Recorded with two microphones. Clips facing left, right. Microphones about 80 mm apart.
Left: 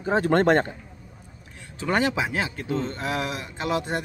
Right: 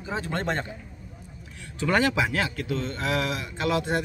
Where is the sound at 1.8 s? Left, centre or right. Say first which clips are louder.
Right 1 dB; left.